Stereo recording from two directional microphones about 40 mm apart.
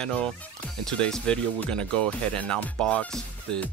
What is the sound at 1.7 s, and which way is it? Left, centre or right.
Speech, left.